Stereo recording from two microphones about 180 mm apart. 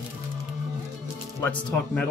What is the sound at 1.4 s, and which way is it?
Speech, 10° left (ahead or behind).